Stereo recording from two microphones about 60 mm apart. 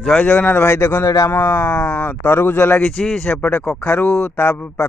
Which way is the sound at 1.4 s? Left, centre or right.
Left.